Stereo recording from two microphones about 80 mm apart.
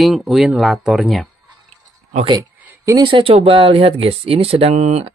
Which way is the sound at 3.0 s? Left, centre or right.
Right.